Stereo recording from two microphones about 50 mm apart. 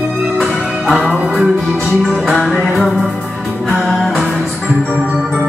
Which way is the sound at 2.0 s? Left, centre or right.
Centre.